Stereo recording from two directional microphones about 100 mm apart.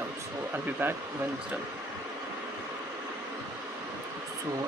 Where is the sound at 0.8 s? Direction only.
20° right (ahead or behind).